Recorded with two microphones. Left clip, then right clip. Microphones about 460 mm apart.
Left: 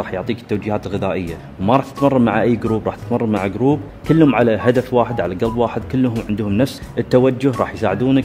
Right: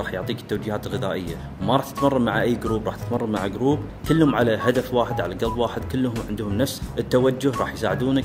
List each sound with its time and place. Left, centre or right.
0.0 s speech: left